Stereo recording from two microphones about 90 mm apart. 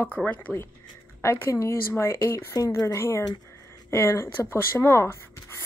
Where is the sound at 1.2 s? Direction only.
30° left (ahead or behind).